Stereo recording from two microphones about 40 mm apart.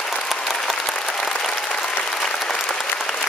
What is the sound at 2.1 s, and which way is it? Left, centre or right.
Applause, centre.